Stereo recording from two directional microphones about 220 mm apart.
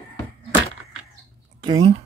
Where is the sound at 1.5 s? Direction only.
20° right (ahead or behind).